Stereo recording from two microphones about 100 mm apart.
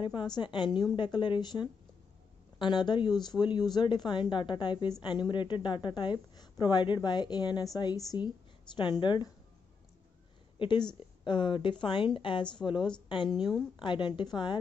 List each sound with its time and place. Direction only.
0.0 s a woman's voice: 50° left (ahead or behind)
8.7 s a woman's voice: 50° left (ahead or behind)
10.6 s a woman's voice: 50° left (ahead or behind)